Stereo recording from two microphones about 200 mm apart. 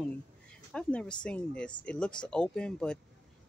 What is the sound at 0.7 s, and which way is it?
Speech, 5° left (ahead or behind).